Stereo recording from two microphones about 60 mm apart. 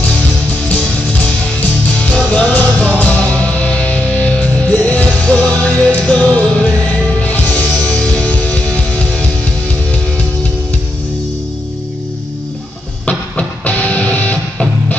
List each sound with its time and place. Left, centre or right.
2.0 s music: left
13.0 s music: left